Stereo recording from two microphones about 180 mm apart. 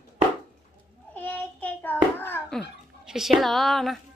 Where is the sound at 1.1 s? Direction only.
10° left (ahead or behind).